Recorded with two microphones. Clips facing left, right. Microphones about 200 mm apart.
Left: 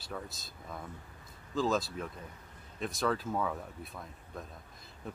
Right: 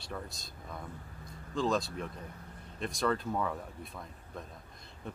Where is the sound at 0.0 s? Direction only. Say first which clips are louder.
Even; centre (ahead or behind).